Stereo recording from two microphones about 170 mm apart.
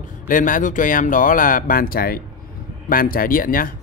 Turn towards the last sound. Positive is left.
turn(degrees=55)  # may be behind; listen again after turning